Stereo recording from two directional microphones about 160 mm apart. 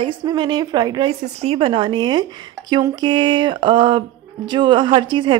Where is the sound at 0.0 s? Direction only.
25° right (ahead or behind).